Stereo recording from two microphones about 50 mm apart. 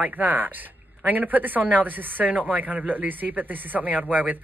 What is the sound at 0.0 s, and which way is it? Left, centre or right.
Speech, right.